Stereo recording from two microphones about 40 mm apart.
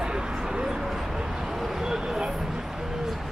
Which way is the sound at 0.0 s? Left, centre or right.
Centre.